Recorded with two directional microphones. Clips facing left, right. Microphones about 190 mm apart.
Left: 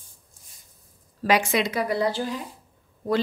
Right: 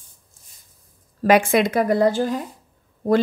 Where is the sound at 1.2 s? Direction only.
55° right (ahead or behind).